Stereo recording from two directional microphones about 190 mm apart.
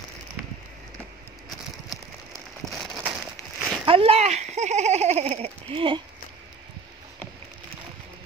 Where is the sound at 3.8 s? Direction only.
30° right (ahead or behind).